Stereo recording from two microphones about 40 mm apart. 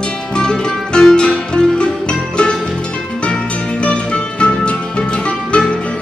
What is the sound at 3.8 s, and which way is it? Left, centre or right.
Music, left.